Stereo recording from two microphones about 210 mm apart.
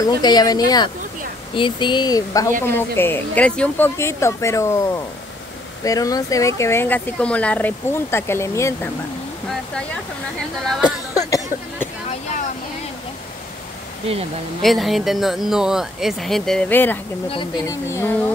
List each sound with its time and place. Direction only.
0.0 s speech: 20° left (ahead or behind)
10.8 s a sound: 15° left (ahead or behind)
14.6 s speech: centre (ahead or behind)
17.3 s speech: 25° left (ahead or behind)
17.8 s speech: 10° left (ahead or behind)